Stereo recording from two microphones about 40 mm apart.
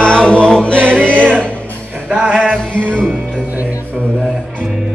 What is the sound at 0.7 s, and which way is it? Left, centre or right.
Music, right.